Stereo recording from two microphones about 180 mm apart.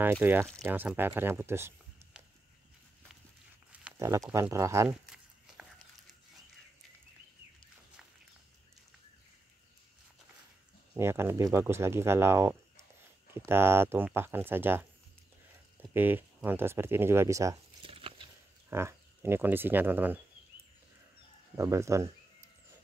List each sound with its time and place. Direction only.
0.0 s speech: 10° right (ahead or behind)
3.7 s pig: 10° right (ahead or behind)
4.3 s speech: 15° right (ahead or behind)
4.8 s walk: 5° right (ahead or behind)
11.0 s speech: 15° right (ahead or behind)
17.8 s biting: 30° right (ahead or behind)
18.7 s speech: 15° right (ahead or behind)
21.5 s speech: 15° right (ahead or behind)